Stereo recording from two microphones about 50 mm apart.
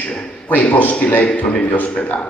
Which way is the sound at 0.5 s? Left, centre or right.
Left.